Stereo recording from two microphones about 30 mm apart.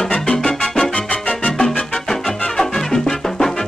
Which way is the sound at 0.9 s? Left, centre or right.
Left.